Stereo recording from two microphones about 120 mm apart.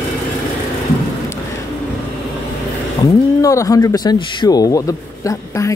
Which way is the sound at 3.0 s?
30° left (ahead or behind).